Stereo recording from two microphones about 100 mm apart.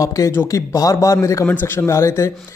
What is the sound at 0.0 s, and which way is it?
A woman's voice, 35° left (ahead or behind).